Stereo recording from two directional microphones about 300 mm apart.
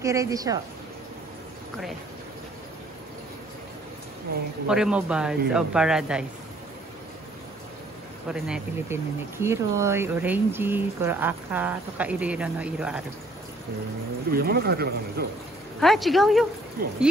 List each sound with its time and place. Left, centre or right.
0.0 s speech: centre
4.6 s speech: centre
8.3 s speech: centre
14.3 s speech: right
15.8 s speech: centre